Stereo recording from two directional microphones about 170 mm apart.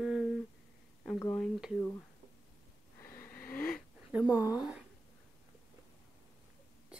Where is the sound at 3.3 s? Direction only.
60° left (ahead or behind).